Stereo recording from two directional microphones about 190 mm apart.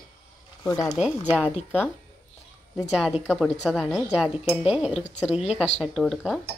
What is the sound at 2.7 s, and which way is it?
Speech, 5° right (ahead or behind).